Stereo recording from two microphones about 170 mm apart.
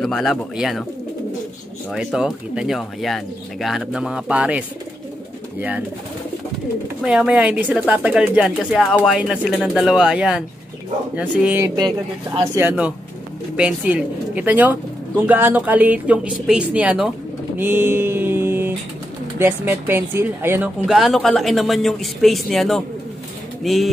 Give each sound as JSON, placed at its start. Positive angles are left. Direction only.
{"t": 0.0, "sound": "speech", "side_deg": 0}
{"t": 1.9, "sound": "speech", "side_deg": 0}
{"t": 7.1, "sound": "speech", "side_deg": -5}
{"t": 11.6, "sound": "speech", "side_deg": -25}
{"t": 12.5, "sound": "speech", "side_deg": -10}
{"t": 17.6, "sound": "a sound", "side_deg": -10}
{"t": 19.3, "sound": "speech", "side_deg": -15}
{"t": 20.8, "sound": "speech", "side_deg": 0}